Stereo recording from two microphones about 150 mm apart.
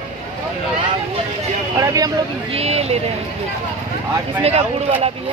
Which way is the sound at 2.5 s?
45° right (ahead or behind).